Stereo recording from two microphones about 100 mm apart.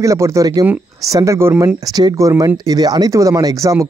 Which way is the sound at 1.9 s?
35° right (ahead or behind).